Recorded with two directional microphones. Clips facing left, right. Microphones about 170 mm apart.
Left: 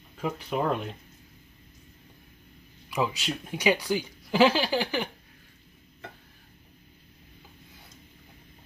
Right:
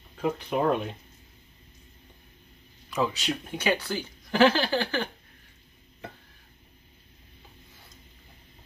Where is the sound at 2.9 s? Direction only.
10° left (ahead or behind).